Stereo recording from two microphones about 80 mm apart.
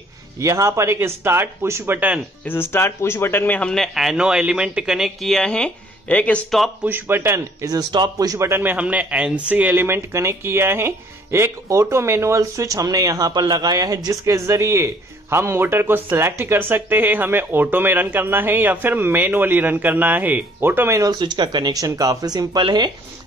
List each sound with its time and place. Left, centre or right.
0.4 s speech: right
2.0 s speech: centre
2.4 s speech: left
3.7 s speech: centre
6.8 s speech: right
7.9 s speech: right
8.4 s speech: right
8.7 s speech: centre; by 12.4 s right
12.4 s speech: right
13.4 s speech: right
21.1 s speech: right
21.8 s speech: right